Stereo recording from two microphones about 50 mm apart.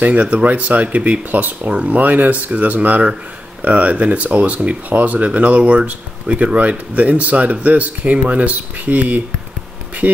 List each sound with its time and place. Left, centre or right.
0.0 s speech: right